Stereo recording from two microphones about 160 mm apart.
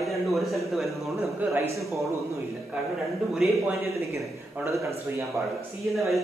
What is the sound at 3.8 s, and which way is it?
A man's voice, 20° right (ahead or behind).